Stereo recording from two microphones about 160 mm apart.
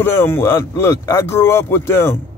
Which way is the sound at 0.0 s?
15° left (ahead or behind).